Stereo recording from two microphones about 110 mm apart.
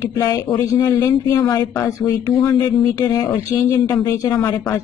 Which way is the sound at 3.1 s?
35° left (ahead or behind).